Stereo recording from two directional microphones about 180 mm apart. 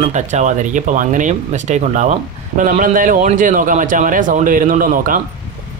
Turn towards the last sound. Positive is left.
turn(degrees=-50)  # may be behind; listen again after turning